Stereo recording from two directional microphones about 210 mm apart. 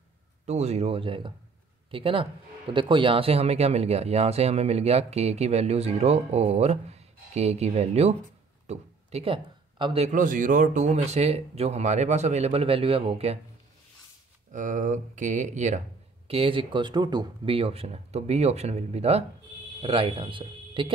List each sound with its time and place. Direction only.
0.5 s speech: 30° right (ahead or behind)
14.5 s speech: 35° right (ahead or behind)